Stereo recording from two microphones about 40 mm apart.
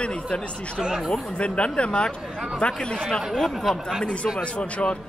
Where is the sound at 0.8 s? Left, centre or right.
Centre.